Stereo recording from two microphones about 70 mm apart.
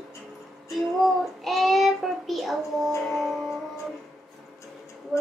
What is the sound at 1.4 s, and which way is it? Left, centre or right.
Child singing, centre.